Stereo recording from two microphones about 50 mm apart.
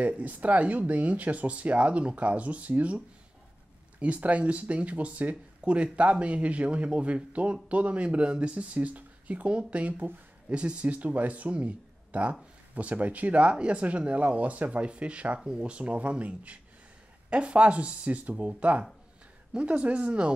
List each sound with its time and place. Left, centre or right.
0.0 s speech: right
4.0 s speech: right